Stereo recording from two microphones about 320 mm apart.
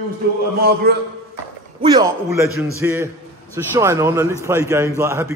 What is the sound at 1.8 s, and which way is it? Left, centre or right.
A man's voice, centre.